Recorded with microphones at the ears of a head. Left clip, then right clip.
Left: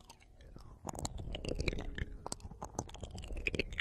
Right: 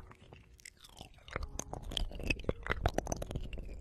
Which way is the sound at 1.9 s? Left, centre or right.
Right.